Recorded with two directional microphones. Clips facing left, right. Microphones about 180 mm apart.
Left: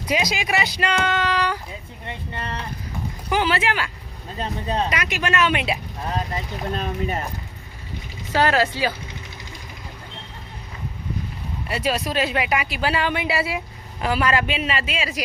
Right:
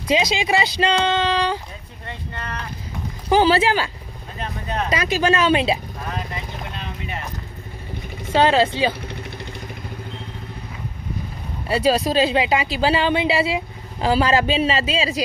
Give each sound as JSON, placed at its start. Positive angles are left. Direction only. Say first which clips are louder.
{"t": 0.1, "sound": "a woman's voice", "louder": "right 4 dB", "side_deg": -25}
{"t": 2.0, "sound": "speech", "louder": "left 1 dB", "side_deg": 25}
{"t": 3.3, "sound": "speech", "louder": "right 6 dB", "side_deg": -30}
{"t": 4.4, "sound": "speech", "louder": "left 2 dB", "side_deg": 30}
{"t": 4.8, "sound": "speech", "louder": "right 5 dB", "side_deg": -30}
{"t": 6.7, "sound": "speech", "louder": "left 10 dB", "side_deg": 45}
{"t": 8.3, "sound": "a woman's voice", "louder": "right 3 dB", "side_deg": -25}
{"t": 9.0, "sound": "vehicle", "louder": "right 6 dB", "side_deg": -60}
{"t": 11.7, "sound": "a woman's voice", "louder": "right 6 dB", "side_deg": -30}